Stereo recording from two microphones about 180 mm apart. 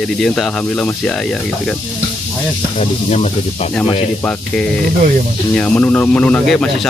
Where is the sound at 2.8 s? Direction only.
35° left (ahead or behind).